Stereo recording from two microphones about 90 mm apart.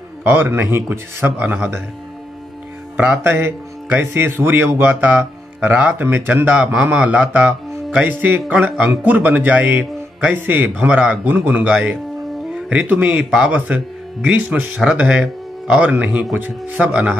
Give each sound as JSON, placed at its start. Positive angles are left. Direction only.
{"t": 0.2, "sound": "a man's voice", "side_deg": -25}
{"t": 3.0, "sound": "a man's voice", "side_deg": -20}